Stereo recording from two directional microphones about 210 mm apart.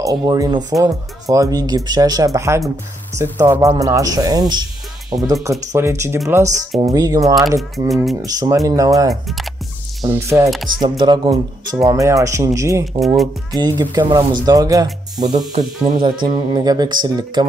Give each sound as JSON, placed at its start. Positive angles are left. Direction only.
{"t": 0.0, "sound": "speech", "side_deg": -15}
{"t": 7.9, "sound": "speech", "side_deg": 0}
{"t": 8.2, "sound": "speech", "side_deg": -15}
{"t": 9.1, "sound": "speech", "side_deg": 0}
{"t": 10.0, "sound": "speech", "side_deg": -15}
{"t": 13.0, "sound": "speech", "side_deg": 0}
{"t": 13.6, "sound": "speech", "side_deg": -20}